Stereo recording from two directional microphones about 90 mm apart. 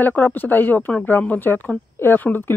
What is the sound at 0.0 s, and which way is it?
Speech, 20° left (ahead or behind).